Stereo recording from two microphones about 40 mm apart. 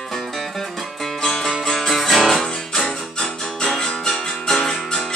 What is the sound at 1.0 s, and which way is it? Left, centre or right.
Music, centre.